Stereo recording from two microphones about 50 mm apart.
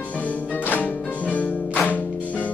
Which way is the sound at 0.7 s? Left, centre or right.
Left.